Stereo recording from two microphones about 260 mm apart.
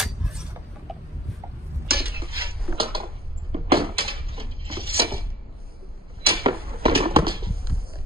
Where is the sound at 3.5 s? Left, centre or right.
Centre.